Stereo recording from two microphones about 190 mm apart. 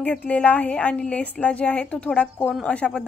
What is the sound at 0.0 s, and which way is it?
A woman's voice, 5° left (ahead or behind).